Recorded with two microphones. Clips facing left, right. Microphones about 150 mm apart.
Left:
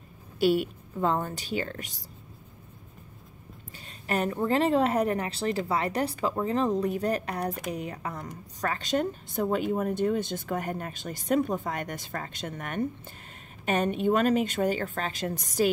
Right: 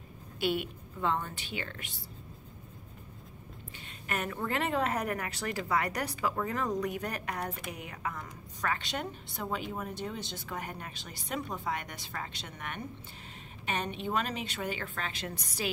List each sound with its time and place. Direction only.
0.4 s a woman's voice: 40° left (ahead or behind)
4.1 s a woman's voice: 30° left (ahead or behind)